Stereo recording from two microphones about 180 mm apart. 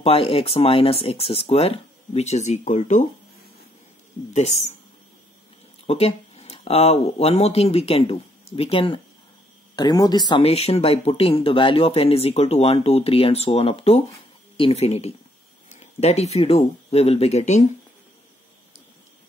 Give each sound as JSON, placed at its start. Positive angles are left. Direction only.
{"t": 0.0, "sound": "speech", "side_deg": 35}
{"t": 4.3, "sound": "speech", "side_deg": 40}
{"t": 5.9, "sound": "speech", "side_deg": 35}